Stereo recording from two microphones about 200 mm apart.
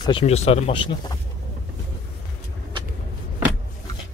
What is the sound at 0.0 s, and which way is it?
Speech, 30° left (ahead or behind).